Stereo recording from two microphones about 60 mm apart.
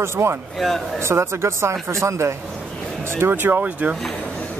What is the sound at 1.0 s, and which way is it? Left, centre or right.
A man's voice, right.